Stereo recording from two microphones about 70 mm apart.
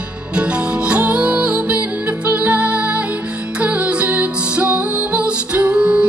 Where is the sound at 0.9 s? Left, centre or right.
Centre.